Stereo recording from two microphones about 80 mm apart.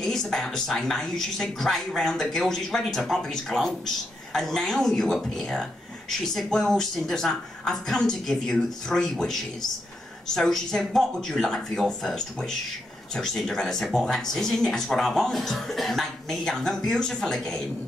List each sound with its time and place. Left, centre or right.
0.0 s a woman's voice: centre